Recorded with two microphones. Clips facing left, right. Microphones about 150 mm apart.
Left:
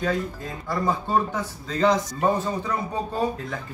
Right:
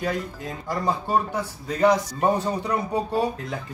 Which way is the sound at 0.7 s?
10° right (ahead or behind).